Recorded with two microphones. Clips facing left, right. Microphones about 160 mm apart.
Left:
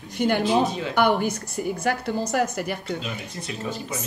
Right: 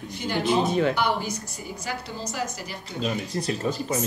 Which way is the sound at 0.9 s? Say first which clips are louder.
Left 4 dB; 55° left (ahead or behind).